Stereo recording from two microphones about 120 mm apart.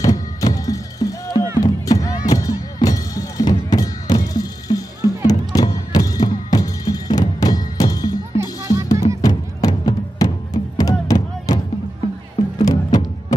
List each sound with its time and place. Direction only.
0.0 s music: 30° left (ahead or behind)
8.4 s music: 25° right (ahead or behind)
9.2 s music: 30° left (ahead or behind)